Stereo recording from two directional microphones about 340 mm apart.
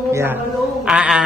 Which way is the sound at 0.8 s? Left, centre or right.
Centre.